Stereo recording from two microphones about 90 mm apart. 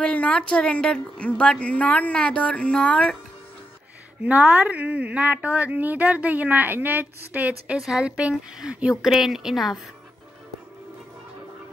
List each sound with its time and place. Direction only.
0.0 s a woman's voice: 10° left (ahead or behind)
4.2 s a woman's voice: 20° right (ahead or behind); by 9.8 s 5° right (ahead or behind)